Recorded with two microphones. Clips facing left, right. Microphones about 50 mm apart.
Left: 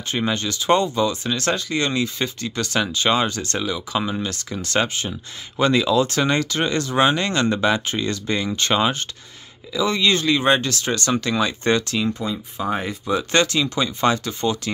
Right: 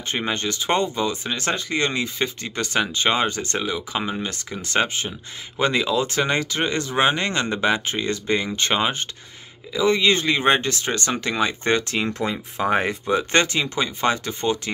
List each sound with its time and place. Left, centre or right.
0.1 s speech: right
12.1 s speech: right
13.0 s speech: right